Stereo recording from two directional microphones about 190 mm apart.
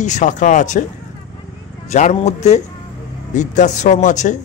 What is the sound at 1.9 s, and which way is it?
Speech, 40° left (ahead or behind).